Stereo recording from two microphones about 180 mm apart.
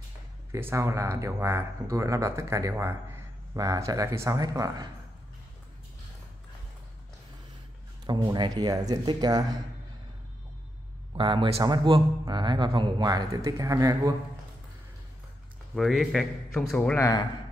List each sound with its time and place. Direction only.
0.5 s speech: 15° right (ahead or behind)
8.1 s speech: 25° right (ahead or behind)
11.1 s speech: 30° right (ahead or behind)
15.7 s speech: centre (ahead or behind); by 17.2 s 15° left (ahead or behind)